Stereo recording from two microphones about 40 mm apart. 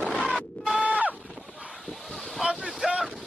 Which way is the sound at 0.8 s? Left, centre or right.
Right.